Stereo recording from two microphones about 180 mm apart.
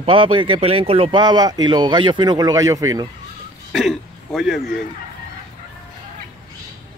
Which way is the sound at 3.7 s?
Centre (ahead or behind).